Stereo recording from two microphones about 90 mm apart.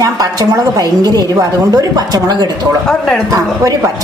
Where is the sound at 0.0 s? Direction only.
40° right (ahead or behind).